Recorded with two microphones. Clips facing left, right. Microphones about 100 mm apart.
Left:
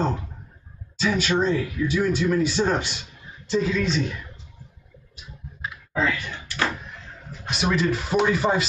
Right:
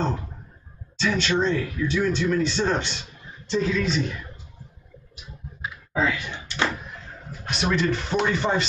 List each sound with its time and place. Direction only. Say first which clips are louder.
0.9 s speech: left 1 dB; 10° left (ahead or behind)
5.6 s door: even; 10° right (ahead or behind)
7.4 s speech: left 1 dB; centre (ahead or behind)